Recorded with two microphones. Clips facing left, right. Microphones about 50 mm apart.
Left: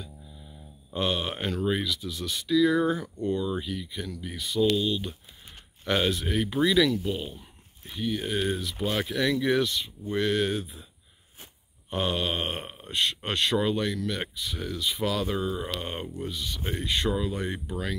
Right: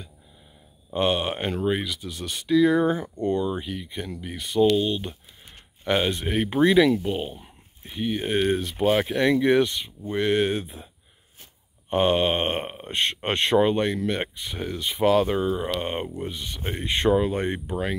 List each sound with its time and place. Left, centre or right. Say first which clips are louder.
0.8 s speech: right 5 dB; right
2.0 s speech: even; right
4.4 s speech: right 5 dB; right
4.7 s speech: right 3 dB; right
6.1 s speech: right 4 dB; right
7.2 s speech: right 5 dB; right
11.9 s speech: right 7 dB; right
15.2 s speech: right 5 dB; centre; by 17.6 s right
17.6 s speech: right 5 dB; right